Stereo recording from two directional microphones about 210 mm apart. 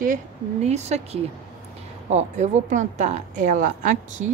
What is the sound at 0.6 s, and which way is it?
A woman's voice, 30° right (ahead or behind).